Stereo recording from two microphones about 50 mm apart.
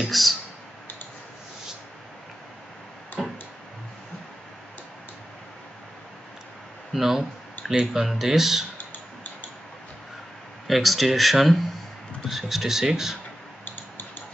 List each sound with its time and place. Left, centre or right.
0.1 s speech: centre
3.2 s tick-tock: centre
6.9 s speech: centre
8.7 s tick: left
10.7 s speech: centre
13.7 s a sound: left